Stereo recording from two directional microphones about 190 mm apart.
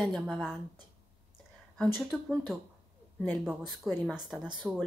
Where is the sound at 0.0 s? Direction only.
Centre (ahead or behind).